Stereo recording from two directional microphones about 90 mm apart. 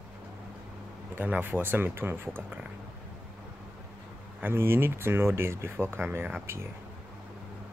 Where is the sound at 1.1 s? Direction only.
20° right (ahead or behind).